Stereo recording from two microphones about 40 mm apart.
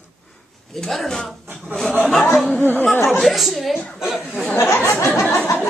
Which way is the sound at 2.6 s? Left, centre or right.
Left.